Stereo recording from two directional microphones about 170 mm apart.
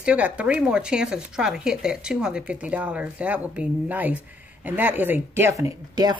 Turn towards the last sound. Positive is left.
turn(degrees=-20)  # may be behind; listen again after turning